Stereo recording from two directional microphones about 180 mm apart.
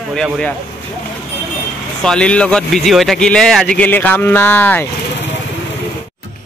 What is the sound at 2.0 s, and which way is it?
Speech, 5° left (ahead or behind).